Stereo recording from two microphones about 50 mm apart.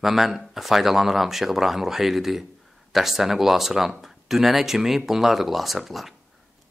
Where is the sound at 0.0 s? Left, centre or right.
Centre.